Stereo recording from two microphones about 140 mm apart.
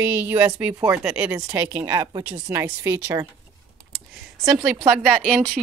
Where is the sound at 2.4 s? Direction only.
15° right (ahead or behind).